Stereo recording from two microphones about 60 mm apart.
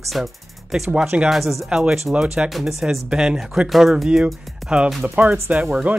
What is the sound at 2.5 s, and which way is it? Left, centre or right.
Speech, centre.